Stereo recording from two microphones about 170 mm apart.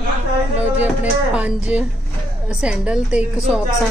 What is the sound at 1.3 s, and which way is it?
A woman's voice, 5° right (ahead or behind).